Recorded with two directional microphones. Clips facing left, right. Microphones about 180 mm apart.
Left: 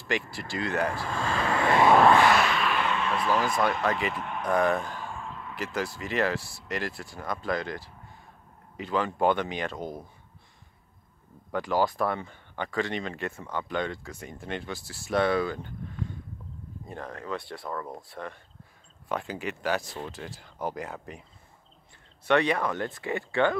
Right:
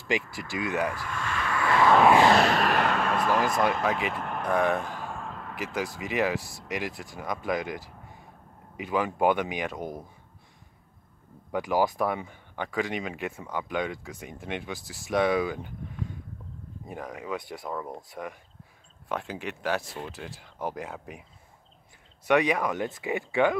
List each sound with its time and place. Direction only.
0.2 s speech: 30° left (ahead or behind)
0.8 s vehicle: 30° left (ahead or behind)
2.3 s artillery fire: 40° right (ahead or behind)
3.8 s speech: 5° right (ahead or behind)
4.1 s speech: 50° right (ahead or behind)
4.5 s speech: centre (ahead or behind)
5.0 s a sound: 50° right (ahead or behind)
6.0 s speech: 5° right (ahead or behind)
11.5 s speech: 10° right (ahead or behind)
16.8 s speech: 10° right (ahead or behind)
22.3 s speech: 10° right (ahead or behind)